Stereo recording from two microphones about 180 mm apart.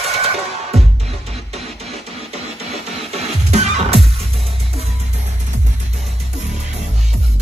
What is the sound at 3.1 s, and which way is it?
Music, 35° right (ahead or behind).